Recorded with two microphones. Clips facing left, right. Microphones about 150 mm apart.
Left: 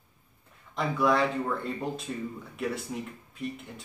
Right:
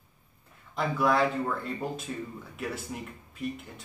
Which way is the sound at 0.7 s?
Centre (ahead or behind).